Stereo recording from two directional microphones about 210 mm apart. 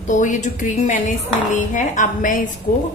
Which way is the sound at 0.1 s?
35° left (ahead or behind).